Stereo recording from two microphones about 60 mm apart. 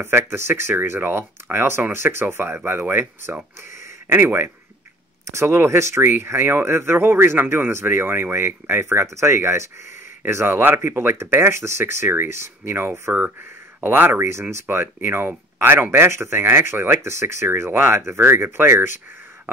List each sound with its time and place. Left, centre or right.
0.0 s speech: right
5.2 s speech: right